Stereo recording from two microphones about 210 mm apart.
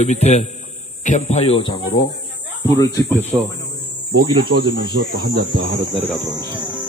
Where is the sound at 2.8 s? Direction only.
15° left (ahead or behind).